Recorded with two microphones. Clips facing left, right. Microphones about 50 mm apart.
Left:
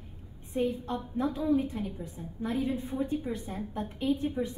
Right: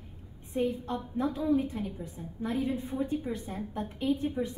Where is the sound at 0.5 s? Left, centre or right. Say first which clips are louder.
Even; centre.